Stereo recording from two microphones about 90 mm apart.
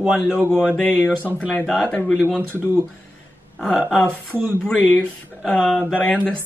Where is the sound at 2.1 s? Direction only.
Centre (ahead or behind).